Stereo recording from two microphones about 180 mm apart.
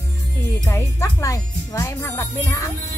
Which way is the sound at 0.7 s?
15° left (ahead or behind).